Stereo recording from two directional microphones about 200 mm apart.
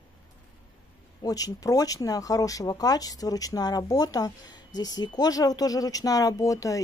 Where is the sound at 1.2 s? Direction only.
20° left (ahead or behind).